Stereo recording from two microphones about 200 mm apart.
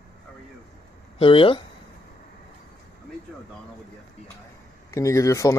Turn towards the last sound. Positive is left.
turn(degrees=15)  # may be behind; listen again after turning